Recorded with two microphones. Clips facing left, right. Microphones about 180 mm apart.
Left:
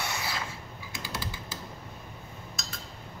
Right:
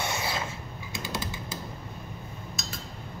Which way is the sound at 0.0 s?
25° right (ahead or behind).